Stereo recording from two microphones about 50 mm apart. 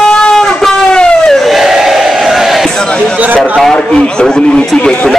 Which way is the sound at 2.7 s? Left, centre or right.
Centre.